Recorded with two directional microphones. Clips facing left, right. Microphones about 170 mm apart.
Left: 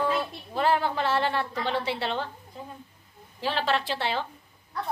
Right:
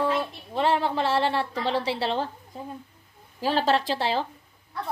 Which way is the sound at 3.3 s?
40° right (ahead or behind).